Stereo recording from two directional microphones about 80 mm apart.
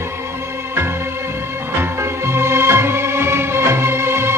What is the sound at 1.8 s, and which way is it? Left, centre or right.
Music, right.